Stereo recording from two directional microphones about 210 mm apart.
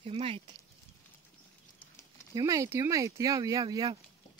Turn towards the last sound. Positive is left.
turn(degrees=-20)  # may be behind; listen again after turning